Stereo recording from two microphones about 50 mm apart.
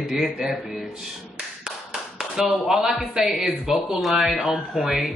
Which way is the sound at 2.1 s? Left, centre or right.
Centre.